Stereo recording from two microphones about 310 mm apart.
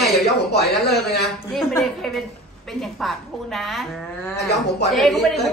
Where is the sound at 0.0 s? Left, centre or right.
Left.